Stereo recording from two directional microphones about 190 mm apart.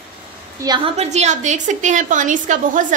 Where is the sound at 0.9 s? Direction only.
35° right (ahead or behind).